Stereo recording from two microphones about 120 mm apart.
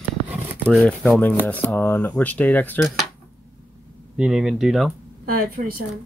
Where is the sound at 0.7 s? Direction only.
5° left (ahead or behind).